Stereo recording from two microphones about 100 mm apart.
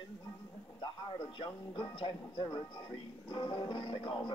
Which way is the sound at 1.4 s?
55° left (ahead or behind).